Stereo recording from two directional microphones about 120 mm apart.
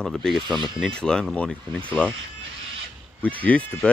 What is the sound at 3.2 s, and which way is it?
Speech, 15° left (ahead or behind).